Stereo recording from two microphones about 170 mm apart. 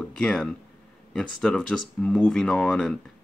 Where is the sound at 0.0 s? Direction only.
5° left (ahead or behind).